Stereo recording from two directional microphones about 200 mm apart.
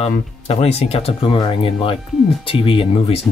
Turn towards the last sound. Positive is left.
turn(degrees=25)  # may be behind; listen again after turning